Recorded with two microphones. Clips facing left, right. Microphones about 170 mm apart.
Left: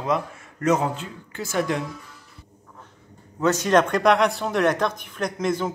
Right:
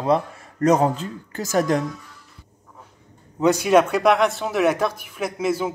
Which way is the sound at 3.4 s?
10° right (ahead or behind).